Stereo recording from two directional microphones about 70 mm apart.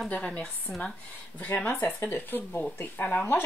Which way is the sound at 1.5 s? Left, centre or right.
Centre.